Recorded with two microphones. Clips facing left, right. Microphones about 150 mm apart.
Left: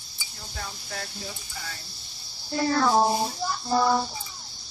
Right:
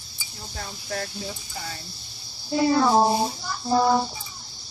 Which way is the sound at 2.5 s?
15° right (ahead or behind).